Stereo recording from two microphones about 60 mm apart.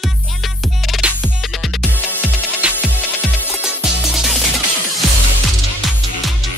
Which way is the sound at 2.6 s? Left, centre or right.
Centre.